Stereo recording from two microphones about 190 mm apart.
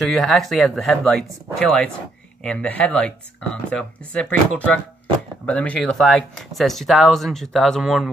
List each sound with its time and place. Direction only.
0.0 s speech: centre (ahead or behind)